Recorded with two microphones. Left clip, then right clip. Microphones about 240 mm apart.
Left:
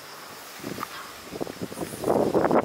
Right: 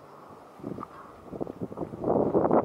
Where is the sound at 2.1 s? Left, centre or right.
Centre.